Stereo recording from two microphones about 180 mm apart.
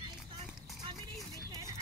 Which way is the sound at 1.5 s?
20° right (ahead or behind).